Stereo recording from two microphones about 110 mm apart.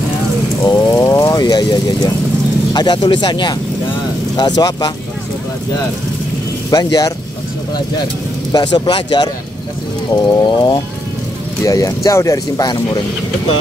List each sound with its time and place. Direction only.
0.7 s speech: 40° left (ahead or behind)
6.7 s speech: 35° left (ahead or behind)
8.5 s speech: 40° left (ahead or behind)
11.6 s speech: 30° left (ahead or behind)